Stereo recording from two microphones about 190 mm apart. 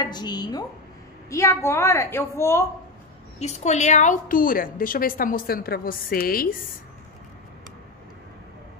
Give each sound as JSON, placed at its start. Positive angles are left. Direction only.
{"t": 0.0, "sound": "a woman's voice", "side_deg": 20}
{"t": 3.3, "sound": "a woman's voice", "side_deg": 35}